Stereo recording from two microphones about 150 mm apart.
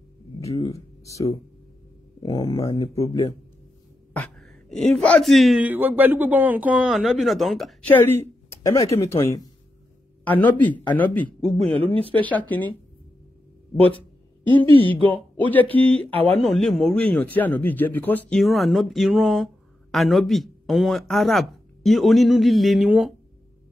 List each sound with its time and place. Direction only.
0.4 s a sound: 20° left (ahead or behind)
1.0 s speech: 20° left (ahead or behind)
4.1 s speech: 5° left (ahead or behind)
7.9 s a woman's voice: 15° left (ahead or behind)
15.0 s a man's voice: 10° left (ahead or behind); by 23.1 s 5° right (ahead or behind)